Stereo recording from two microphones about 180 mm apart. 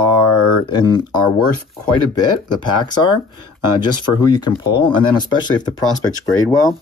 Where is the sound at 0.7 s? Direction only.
25° left (ahead or behind).